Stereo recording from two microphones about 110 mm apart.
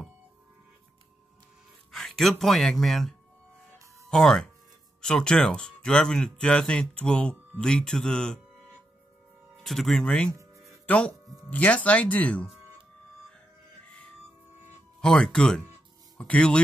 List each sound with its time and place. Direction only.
1.9 s speech: centre (ahead or behind)
3.7 s music: 30° right (ahead or behind)
4.1 s speech: 5° left (ahead or behind)
9.6 s speech: 5° left (ahead or behind)
10.3 s a sound: 30° right (ahead or behind)
10.9 s speech: 10° left (ahead or behind)
15.0 s speech: 5° left (ahead or behind)